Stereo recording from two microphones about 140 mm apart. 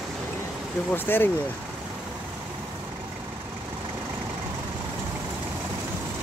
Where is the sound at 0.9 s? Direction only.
15° left (ahead or behind).